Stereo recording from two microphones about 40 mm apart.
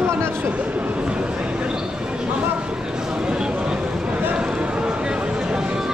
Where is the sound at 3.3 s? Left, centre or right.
Right.